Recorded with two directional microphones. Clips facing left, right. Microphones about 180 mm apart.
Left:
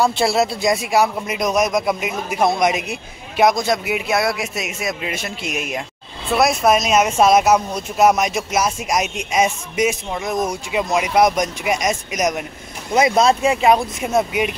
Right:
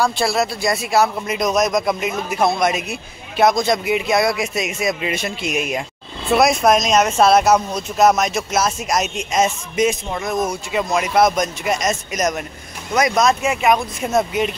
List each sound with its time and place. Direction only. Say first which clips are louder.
0.0 s speech: left 2 dB; 25° left (ahead or behind)
12.9 s speech: left 2 dB; 25° left (ahead or behind)
14.0 s speech: right 2 dB; 10° left (ahead or behind)